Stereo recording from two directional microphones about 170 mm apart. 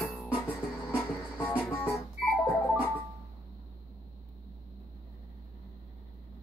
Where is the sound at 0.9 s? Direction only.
15° left (ahead or behind).